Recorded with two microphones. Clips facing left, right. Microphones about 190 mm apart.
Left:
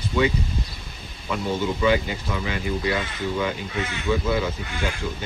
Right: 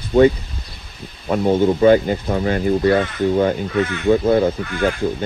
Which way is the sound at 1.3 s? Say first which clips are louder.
Right 9 dB; 50° right (ahead or behind).